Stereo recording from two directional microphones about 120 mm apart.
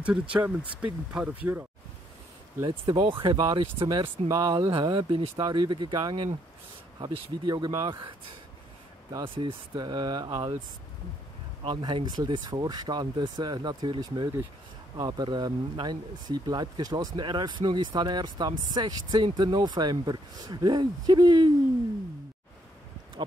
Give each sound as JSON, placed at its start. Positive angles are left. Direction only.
{"t": 0.0, "sound": "speech", "side_deg": -10}
{"t": 2.6, "sound": "speech", "side_deg": -45}
{"t": 4.6, "sound": "speech", "side_deg": -45}
{"t": 9.2, "sound": "speech", "side_deg": -45}
{"t": 11.6, "sound": "speech", "side_deg": -40}